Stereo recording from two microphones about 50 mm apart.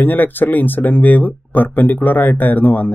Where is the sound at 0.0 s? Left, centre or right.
Left.